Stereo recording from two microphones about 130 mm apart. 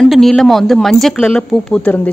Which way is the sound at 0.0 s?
5° left (ahead or behind).